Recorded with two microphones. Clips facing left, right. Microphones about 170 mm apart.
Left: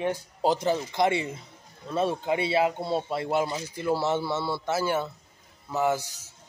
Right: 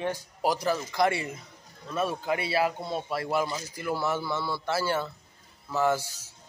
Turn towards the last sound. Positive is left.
turn(degrees=20)  # may be behind; listen again after turning